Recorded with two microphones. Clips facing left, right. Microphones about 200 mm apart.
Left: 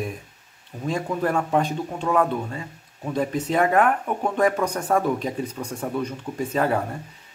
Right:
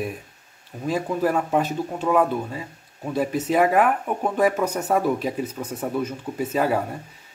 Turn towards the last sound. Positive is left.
turn(degrees=-5)  # may be behind; listen again after turning